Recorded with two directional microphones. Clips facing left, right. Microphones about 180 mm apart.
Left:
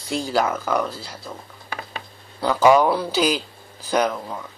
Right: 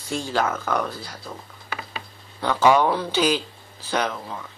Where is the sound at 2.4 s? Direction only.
5° left (ahead or behind).